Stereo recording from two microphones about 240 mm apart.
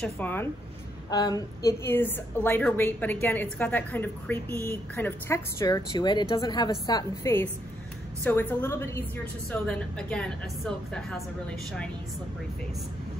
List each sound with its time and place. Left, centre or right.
0.0 s a woman's voice: centre